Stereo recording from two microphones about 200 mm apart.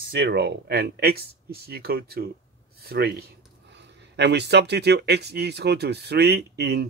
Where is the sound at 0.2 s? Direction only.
55° right (ahead or behind).